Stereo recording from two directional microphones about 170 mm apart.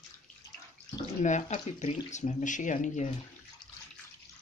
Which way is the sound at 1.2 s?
45° left (ahead or behind).